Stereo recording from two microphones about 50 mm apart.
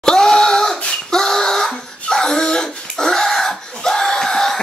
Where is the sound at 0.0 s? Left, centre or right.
Centre.